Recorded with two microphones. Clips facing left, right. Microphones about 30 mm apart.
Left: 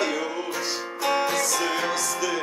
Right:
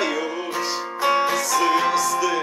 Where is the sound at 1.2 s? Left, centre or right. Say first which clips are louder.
Right 4 dB; centre.